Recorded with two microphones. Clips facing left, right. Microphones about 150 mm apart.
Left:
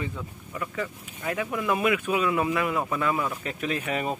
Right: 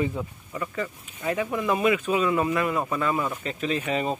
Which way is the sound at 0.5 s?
Centre (ahead or behind).